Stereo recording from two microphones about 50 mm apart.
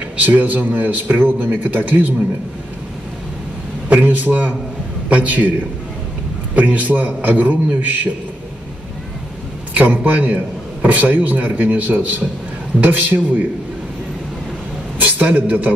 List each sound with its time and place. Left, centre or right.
0.2 s a man's voice: right
3.9 s a man's voice: right
6.5 s a man's voice: right
9.8 s a man's voice: right
15.0 s a man's voice: right